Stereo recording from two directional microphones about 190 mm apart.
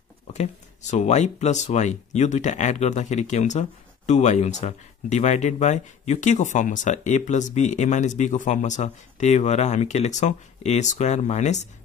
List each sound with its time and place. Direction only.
0.3 s speech: 35° left (ahead or behind)